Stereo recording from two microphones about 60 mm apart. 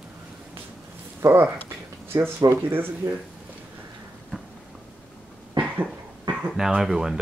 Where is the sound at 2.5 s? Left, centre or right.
Right.